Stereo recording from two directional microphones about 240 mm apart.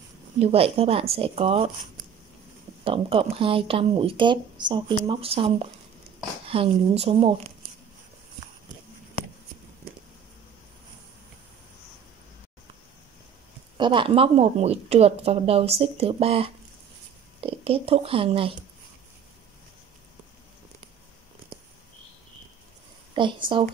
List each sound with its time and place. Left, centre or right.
0.4 s speech: right
13.7 s speech: right
23.2 s speech: right